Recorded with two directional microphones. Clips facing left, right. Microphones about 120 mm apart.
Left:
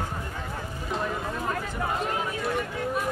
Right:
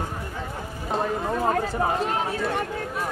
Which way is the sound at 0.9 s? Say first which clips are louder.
Right 6 dB; 40° right (ahead or behind).